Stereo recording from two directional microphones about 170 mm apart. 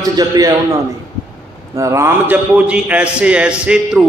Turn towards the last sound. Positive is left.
turn(degrees=-5)  # may be behind; listen again after turning